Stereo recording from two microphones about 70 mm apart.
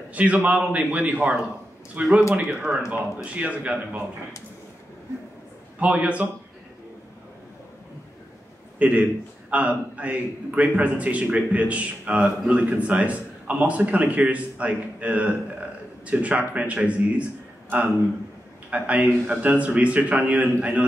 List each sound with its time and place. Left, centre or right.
0.1 s a man's voice: right
5.8 s a man's voice: centre
8.7 s a man's voice: right